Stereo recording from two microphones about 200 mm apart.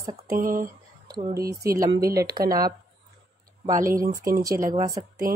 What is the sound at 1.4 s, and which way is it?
Speech, 15° right (ahead or behind).